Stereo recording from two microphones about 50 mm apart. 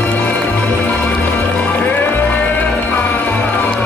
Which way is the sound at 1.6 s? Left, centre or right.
Left.